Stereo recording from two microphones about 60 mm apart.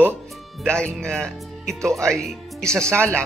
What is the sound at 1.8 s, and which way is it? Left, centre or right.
Speech, right.